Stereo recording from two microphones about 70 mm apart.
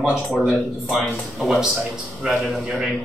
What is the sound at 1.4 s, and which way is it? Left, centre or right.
A man's voice, centre.